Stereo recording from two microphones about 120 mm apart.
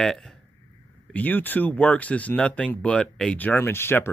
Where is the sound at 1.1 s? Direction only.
15° left (ahead or behind).